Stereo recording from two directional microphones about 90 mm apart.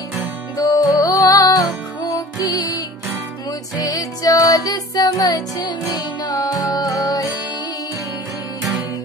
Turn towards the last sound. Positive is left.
turn(degrees=40)  # may be behind; listen again after turning